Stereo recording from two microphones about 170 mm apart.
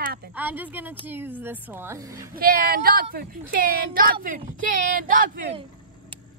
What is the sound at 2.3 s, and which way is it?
A woman's voice, 60° right (ahead or behind).